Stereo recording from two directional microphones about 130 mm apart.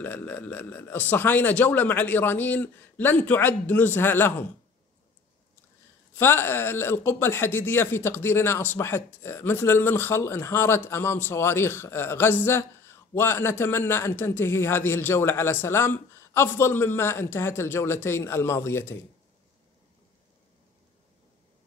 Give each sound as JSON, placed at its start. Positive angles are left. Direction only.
{"t": 0.0, "sound": "speech", "side_deg": 15}
{"t": 6.1, "sound": "a man's voice", "side_deg": 15}